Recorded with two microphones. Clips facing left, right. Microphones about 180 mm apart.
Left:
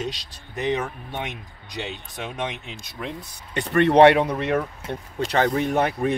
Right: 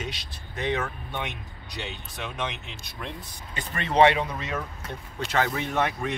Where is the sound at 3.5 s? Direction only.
65° left (ahead or behind).